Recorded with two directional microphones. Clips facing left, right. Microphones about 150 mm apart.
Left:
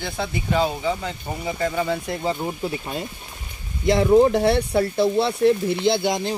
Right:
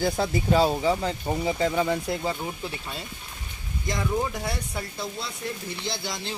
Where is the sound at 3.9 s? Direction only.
70° left (ahead or behind).